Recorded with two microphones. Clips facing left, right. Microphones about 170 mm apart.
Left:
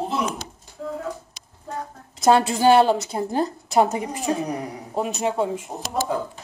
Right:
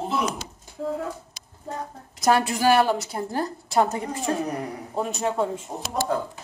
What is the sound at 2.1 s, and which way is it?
A woman's voice, 25° left (ahead or behind).